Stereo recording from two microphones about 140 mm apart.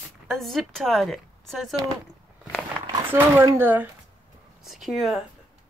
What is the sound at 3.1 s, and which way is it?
Speech, 15° right (ahead or behind).